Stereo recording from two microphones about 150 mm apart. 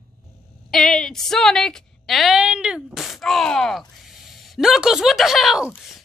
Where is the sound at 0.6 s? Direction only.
5° left (ahead or behind).